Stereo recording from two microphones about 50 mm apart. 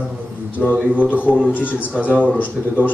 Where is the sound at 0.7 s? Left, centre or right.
Right.